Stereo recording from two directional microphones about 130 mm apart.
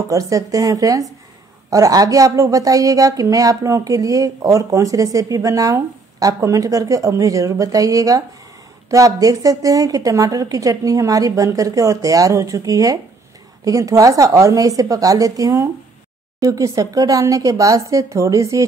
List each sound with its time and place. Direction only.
0.1 s a woman's voice: 25° right (ahead or behind)